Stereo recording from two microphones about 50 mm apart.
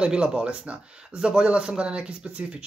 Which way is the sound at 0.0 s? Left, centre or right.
Centre.